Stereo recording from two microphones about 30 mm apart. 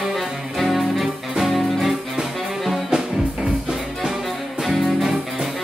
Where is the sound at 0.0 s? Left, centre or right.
Centre.